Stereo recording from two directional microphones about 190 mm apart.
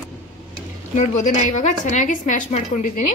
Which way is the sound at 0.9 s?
40° left (ahead or behind).